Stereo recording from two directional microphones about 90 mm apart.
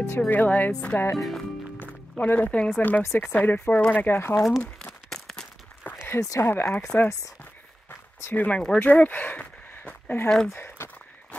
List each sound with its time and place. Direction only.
0.3 s speech: 20° left (ahead or behind)
1.1 s speech: 5° left (ahead or behind)
2.1 s speech: 20° left (ahead or behind)
3.3 s speech: 15° left (ahead or behind)
4.4 s speech: 5° right (ahead or behind)
5.1 s a sound: 5° left (ahead or behind)
6.0 s speech: 35° left (ahead or behind)
6.5 s speech: 20° left (ahead or behind)
7.9 s a sound: 20° left (ahead or behind)
10.2 s speech: 10° left (ahead or behind)
10.5 s speech: 25° left (ahead or behind)